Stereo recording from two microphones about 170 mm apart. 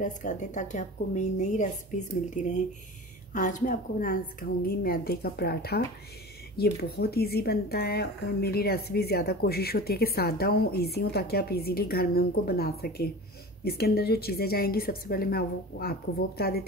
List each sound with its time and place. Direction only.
0.0 s a woman's voice: 45° left (ahead or behind); by 16.6 s 65° left (ahead or behind)